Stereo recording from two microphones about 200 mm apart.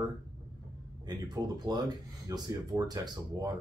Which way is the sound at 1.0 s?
20° right (ahead or behind).